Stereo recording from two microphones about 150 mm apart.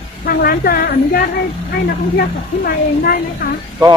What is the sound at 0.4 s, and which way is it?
A woman's voice, 85° left.